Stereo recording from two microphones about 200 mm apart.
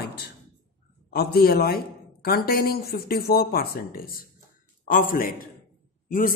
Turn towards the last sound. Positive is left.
turn(degrees=40)  # may be behind; listen again after turning